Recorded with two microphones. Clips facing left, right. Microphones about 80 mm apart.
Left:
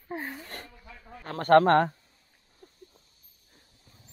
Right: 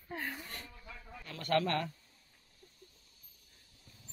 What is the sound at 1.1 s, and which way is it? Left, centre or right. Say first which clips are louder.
Speech: left 14 dB; left.